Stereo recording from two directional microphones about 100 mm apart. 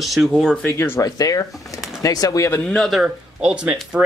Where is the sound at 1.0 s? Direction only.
35° left (ahead or behind).